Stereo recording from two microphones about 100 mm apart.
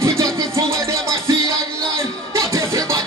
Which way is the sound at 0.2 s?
30° right (ahead or behind).